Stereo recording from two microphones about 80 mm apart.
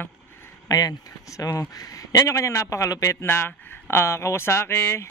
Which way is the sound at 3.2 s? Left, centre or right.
Left.